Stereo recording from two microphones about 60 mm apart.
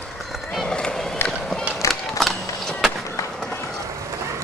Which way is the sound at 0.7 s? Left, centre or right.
Centre.